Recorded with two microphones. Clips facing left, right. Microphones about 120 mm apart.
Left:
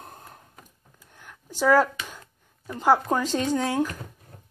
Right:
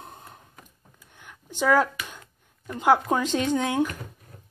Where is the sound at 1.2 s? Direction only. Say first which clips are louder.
Left 2 dB; 5° left (ahead or behind).